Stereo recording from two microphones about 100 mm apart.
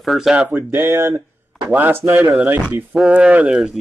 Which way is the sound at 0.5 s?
20° right (ahead or behind).